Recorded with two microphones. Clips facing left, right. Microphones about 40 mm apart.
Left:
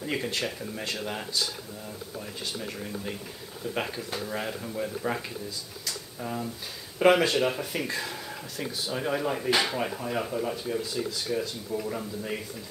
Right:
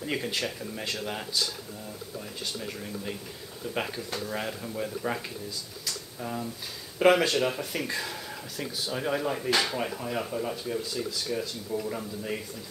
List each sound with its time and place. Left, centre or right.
0.0 s speech: centre
5.9 s a sound: centre
7.0 s speech: centre